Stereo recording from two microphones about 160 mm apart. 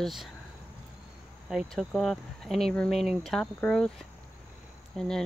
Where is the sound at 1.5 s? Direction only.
Centre (ahead or behind).